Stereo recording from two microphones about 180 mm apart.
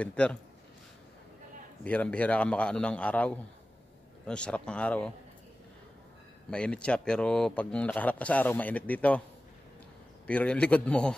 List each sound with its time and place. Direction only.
0.0 s speech: 5° left (ahead or behind)
1.9 s a man's voice: 5° left (ahead or behind)
6.5 s speech: 5° left (ahead or behind)
10.2 s a man's voice: 5° left (ahead or behind)